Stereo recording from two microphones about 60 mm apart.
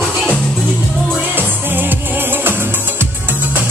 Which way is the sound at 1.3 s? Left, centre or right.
Right.